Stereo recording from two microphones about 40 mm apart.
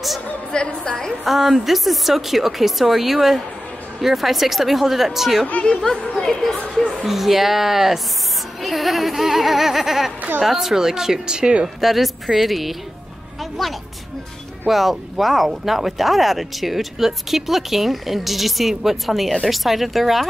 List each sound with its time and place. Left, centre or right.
0.5 s a woman's voice: left
1.2 s speech: centre
5.9 s speech: left
6.2 s a woman's voice: centre; by 11.7 s right
11.8 s a woman's voice: centre